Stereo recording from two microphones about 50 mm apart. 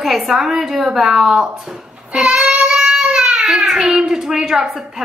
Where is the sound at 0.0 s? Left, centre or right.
Centre.